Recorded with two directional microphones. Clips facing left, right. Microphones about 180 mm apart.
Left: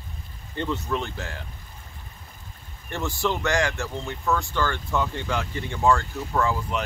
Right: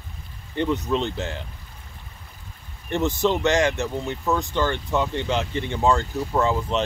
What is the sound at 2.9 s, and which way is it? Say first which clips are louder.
Speech: right 5 dB; 20° right (ahead or behind).